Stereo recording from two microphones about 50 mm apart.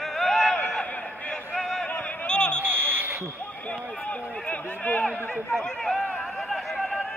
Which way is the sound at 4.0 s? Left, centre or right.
Left.